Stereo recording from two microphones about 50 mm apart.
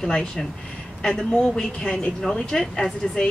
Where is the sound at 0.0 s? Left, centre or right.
Centre.